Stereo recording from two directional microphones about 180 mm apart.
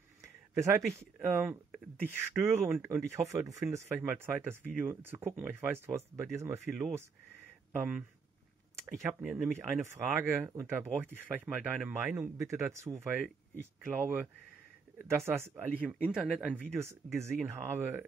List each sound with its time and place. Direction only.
0.6 s speech: 15° right (ahead or behind)
6.6 s speech: centre (ahead or behind)
16.7 s speech: 15° right (ahead or behind)